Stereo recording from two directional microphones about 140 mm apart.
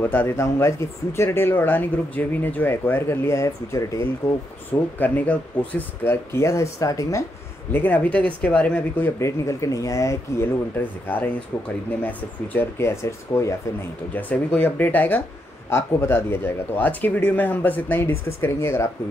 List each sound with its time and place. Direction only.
0.0 s speech: 15° left (ahead or behind)
7.7 s speech: 10° left (ahead or behind)
12.0 s speech: 15° left (ahead or behind)
14.1 s speech: 10° left (ahead or behind)